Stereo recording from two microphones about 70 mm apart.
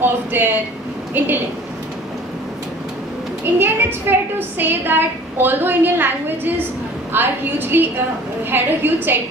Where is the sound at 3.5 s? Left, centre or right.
Right.